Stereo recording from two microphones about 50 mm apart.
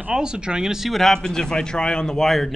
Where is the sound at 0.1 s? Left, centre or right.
Centre.